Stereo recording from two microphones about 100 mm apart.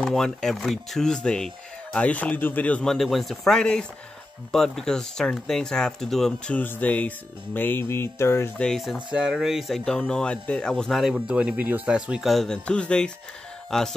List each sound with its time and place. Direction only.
0.0 s speech: 5° left (ahead or behind)
6.5 s music: 20° left (ahead or behind)
8.5 s speech: 5° left (ahead or behind)
9.1 s speech: 5° right (ahead or behind)